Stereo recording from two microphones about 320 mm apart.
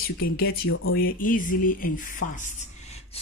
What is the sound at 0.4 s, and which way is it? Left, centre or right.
Speech, left.